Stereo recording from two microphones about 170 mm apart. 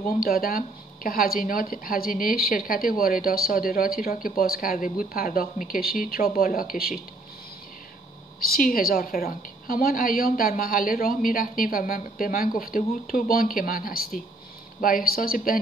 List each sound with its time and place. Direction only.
0.0 s speech: 60° left (ahead or behind)
8.4 s speech: 60° left (ahead or behind)